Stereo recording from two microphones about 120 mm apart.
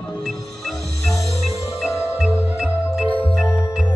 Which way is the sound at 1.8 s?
5° right (ahead or behind).